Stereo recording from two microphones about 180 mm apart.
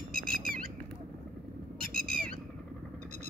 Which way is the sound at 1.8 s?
55° right (ahead or behind).